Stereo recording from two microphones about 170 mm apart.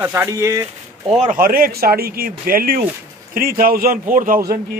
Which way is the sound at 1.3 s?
60° right (ahead or behind).